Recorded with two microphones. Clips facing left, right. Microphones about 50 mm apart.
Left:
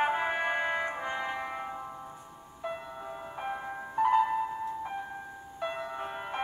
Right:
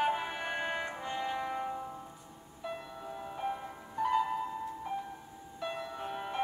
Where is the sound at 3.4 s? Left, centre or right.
Left.